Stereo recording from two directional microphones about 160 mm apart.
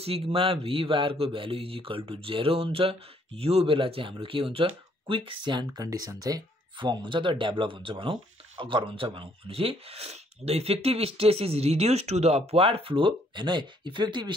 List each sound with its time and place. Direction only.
0.0 s a man's voice: 35° right (ahead or behind)